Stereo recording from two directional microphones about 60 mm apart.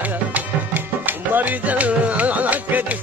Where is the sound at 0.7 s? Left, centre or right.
Right.